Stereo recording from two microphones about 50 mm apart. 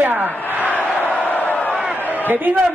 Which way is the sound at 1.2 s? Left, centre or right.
Left.